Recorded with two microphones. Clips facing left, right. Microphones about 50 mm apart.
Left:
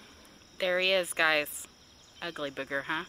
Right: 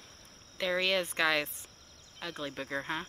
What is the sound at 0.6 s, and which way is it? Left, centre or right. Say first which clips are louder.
Speech: left 3 dB; centre.